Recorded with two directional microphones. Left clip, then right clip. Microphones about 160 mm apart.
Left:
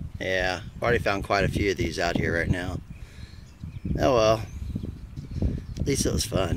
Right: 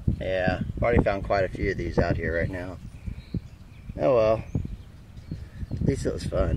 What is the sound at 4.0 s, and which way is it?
Speech, 25° left (ahead or behind).